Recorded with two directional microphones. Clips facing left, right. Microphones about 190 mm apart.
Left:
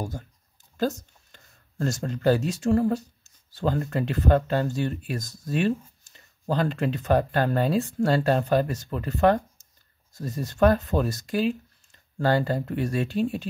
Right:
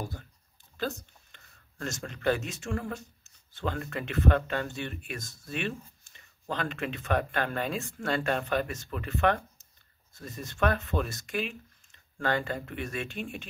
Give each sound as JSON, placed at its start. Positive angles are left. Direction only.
{"t": 0.7, "sound": "speech", "side_deg": 40}